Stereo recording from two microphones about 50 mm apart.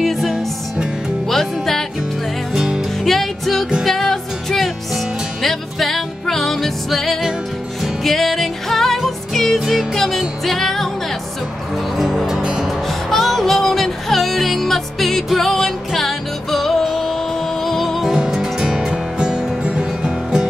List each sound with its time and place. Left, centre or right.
0.0 s music: centre
2.5 s music: centre
3.0 s music: centre
12.0 s music: centre
12.6 s music: centre
18.1 s music: centre